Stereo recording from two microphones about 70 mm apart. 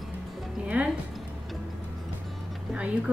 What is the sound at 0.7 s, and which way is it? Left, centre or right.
Speech, centre.